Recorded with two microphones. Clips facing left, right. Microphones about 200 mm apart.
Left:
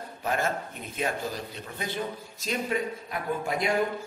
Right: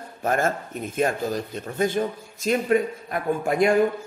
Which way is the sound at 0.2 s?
50° right (ahead or behind).